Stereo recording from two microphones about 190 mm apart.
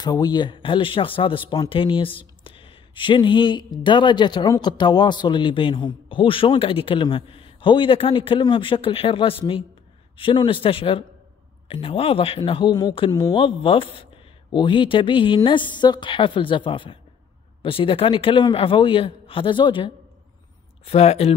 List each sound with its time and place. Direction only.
0.0 s speech: 20° left (ahead or behind)